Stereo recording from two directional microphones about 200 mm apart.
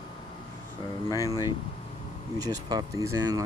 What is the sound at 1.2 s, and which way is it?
Speech, 20° left (ahead or behind).